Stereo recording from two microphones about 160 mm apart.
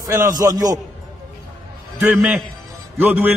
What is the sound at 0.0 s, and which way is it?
Speech, 20° right (ahead or behind).